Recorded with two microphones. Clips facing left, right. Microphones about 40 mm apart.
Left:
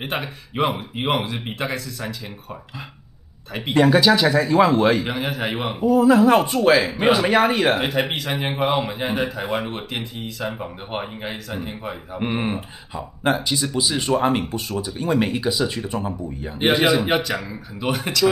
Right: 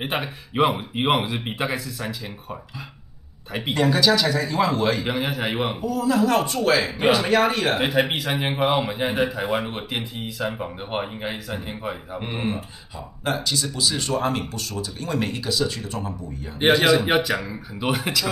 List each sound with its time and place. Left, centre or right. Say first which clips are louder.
0.0 s a man's voice: even; centre
3.8 s speech: left 3 dB; centre
5.0 s a man's voice: even; centre
5.9 s speech: left 8 dB; left
6.8 s a man's voice: left 2 dB; centre
7.1 s speech: left 1 dB; centre
7.7 s a man's voice: even; centre
12.2 s speech: left 6 dB; centre
16.5 s a man's voice: even; centre